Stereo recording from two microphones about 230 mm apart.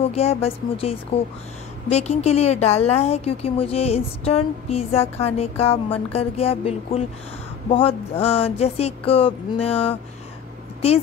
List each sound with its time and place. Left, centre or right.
0.0 s a woman's voice: left